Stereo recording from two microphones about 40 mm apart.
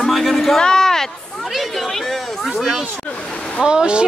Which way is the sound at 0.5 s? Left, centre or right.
Centre.